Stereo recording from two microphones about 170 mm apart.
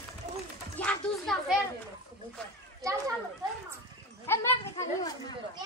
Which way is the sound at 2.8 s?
20° right (ahead or behind).